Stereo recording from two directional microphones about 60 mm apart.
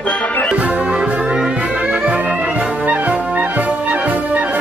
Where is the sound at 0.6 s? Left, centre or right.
Right.